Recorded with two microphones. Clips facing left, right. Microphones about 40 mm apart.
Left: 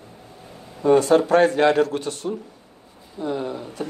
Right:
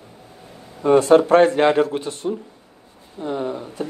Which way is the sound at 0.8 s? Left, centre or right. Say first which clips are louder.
Right 2 dB; centre.